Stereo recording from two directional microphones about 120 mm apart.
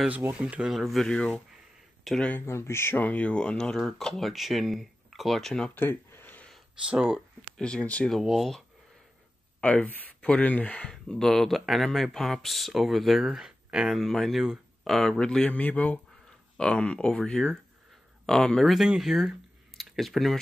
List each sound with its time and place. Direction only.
0.2 s speech: 10° right (ahead or behind); by 2.4 s 10° left (ahead or behind)
2.4 s speech: 20° left (ahead or behind); by 5.7 s 5° left (ahead or behind)
5.8 s a sound: 15° left (ahead or behind)
7.5 s speech: 10° left (ahead or behind)
9.6 s speech: 10° left (ahead or behind)